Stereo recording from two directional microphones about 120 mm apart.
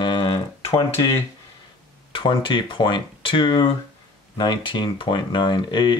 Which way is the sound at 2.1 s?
45° left (ahead or behind).